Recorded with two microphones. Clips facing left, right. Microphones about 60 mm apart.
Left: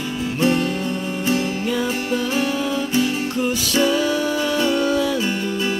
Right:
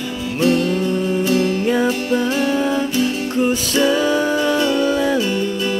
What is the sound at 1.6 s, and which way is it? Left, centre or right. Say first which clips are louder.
Music: right 4 dB; right.